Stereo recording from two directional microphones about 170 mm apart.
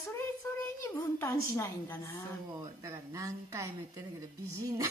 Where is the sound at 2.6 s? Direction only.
20° right (ahead or behind).